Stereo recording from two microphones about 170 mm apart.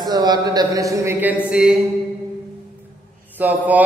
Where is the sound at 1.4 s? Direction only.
5° right (ahead or behind).